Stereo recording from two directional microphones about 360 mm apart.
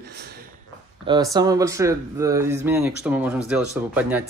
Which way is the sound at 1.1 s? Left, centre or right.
Centre.